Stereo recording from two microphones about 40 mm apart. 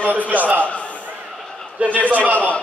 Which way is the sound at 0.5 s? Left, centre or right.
Left.